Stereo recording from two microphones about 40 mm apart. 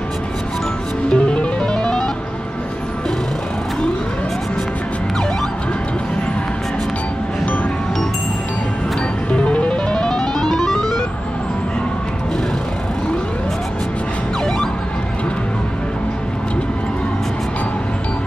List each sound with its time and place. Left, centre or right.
1.1 s music: left
9.3 s music: left; by 11.0 s centre